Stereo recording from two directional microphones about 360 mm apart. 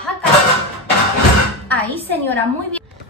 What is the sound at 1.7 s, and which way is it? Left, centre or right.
A woman's voice, centre.